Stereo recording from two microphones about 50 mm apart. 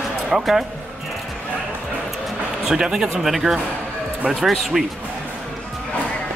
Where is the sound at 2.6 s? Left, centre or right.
Centre.